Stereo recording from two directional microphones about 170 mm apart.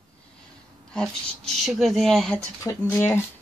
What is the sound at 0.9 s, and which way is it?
Speech, centre (ahead or behind).